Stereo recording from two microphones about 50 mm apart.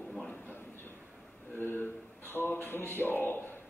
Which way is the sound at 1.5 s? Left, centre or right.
Left.